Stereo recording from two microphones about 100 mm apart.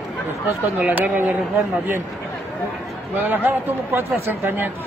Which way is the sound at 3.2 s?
20° right (ahead or behind).